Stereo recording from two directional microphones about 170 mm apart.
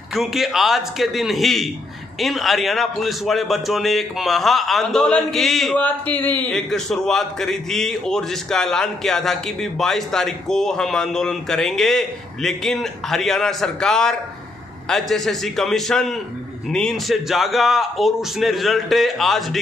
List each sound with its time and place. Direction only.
0.1 s a man's voice: centre (ahead or behind)